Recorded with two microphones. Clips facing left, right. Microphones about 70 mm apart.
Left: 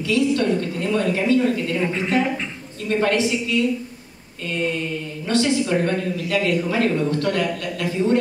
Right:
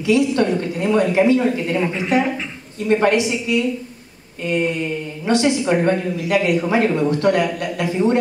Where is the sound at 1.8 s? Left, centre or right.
Centre.